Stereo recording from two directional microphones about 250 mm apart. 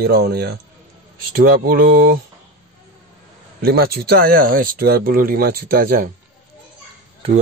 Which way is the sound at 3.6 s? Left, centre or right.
Right.